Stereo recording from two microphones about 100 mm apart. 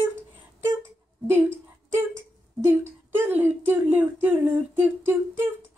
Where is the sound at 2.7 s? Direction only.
20° right (ahead or behind).